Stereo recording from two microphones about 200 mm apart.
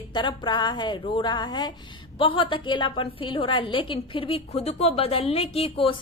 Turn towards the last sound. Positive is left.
turn(degrees=30)  # may be behind; listen again after turning